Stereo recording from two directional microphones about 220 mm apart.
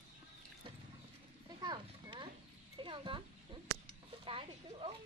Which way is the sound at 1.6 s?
20° right (ahead or behind).